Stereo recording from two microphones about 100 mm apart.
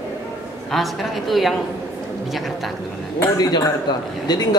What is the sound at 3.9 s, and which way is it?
Speech, 45° left (ahead or behind).